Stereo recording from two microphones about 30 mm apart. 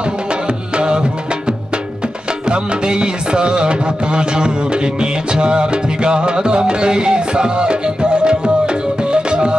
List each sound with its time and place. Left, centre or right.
0.7 s music: right
2.5 s music: right